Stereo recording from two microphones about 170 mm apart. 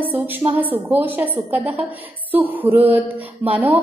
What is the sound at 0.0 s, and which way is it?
A woman's voice, 10° right (ahead or behind).